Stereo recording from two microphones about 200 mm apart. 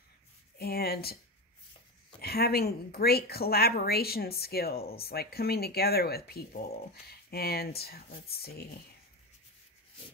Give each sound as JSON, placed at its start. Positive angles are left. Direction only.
{"t": 0.6, "sound": "speech", "side_deg": 50}
{"t": 2.2, "sound": "speech", "side_deg": 50}